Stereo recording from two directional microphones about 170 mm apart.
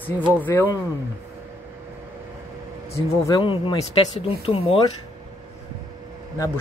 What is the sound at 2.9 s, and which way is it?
Speech, 15° left (ahead or behind).